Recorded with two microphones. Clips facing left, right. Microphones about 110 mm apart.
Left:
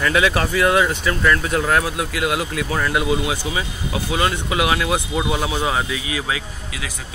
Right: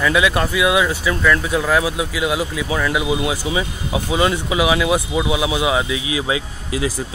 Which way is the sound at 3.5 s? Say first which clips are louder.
Right 3 dB; 20° right (ahead or behind).